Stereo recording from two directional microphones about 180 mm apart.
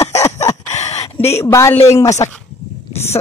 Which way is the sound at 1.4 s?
15° left (ahead or behind).